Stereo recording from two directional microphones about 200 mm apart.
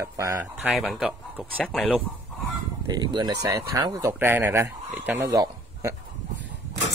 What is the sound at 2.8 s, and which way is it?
Speech, 20° right (ahead or behind).